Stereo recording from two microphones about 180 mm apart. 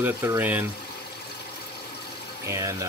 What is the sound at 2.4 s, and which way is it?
Speech, 15° right (ahead or behind).